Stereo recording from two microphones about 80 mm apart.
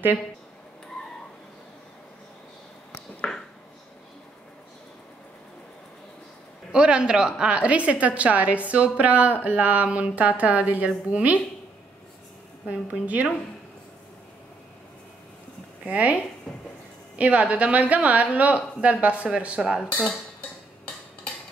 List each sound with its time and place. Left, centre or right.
3.2 s a sound: centre
6.7 s a woman's voice: centre
12.6 s a woman's voice: centre
15.9 s a woman's voice: centre
16.5 s a sound: centre
17.2 s a woman's voice: centre
19.8 s dishes: centre